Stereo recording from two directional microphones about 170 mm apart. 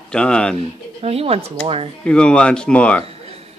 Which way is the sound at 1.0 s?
35° right (ahead or behind).